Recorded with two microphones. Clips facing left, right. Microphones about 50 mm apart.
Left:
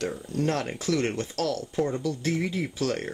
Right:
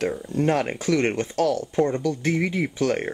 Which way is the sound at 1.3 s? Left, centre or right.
Centre.